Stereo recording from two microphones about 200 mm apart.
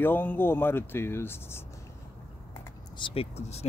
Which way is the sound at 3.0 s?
25° left (ahead or behind).